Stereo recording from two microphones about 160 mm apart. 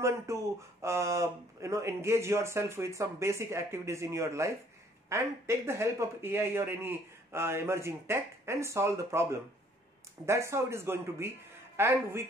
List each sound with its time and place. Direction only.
0.0 s speech: 20° right (ahead or behind)